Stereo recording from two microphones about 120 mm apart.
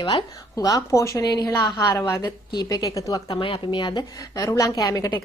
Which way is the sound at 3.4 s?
45° left (ahead or behind).